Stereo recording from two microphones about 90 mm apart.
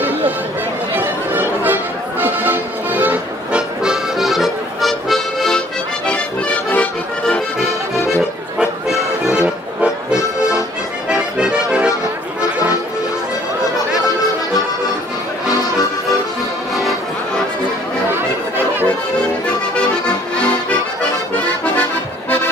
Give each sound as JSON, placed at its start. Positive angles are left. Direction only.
{"t": 0.9, "sound": "music", "side_deg": -20}
{"t": 3.8, "sound": "music", "side_deg": -5}
{"t": 6.0, "sound": "accordion", "side_deg": 15}
{"t": 8.1, "sound": "accordion", "side_deg": -5}
{"t": 12.4, "sound": "music", "side_deg": -15}